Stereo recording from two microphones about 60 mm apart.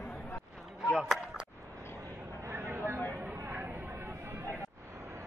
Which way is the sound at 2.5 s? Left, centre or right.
Right.